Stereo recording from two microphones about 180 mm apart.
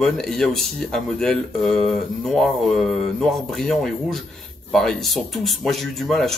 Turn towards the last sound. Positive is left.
turn(degrees=0)  # may be behind; listen again after turning